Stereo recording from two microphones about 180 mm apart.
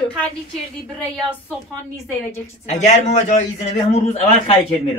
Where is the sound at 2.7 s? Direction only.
40° left (ahead or behind).